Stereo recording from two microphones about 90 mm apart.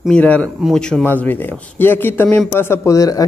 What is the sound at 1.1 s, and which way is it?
Speech, 20° left (ahead or behind).